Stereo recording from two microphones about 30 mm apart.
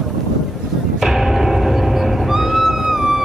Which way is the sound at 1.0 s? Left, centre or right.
Centre.